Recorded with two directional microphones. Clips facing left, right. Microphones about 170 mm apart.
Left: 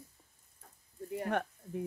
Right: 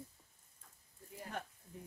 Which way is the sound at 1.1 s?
70° left (ahead or behind).